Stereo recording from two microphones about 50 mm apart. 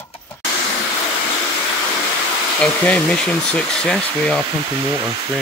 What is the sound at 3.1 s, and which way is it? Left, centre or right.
Speech, centre.